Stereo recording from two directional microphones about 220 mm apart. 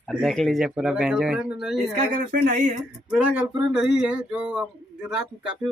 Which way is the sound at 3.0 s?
5° right (ahead or behind).